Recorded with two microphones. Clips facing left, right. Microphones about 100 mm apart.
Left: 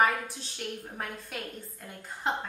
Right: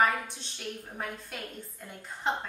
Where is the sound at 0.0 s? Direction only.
Centre (ahead or behind).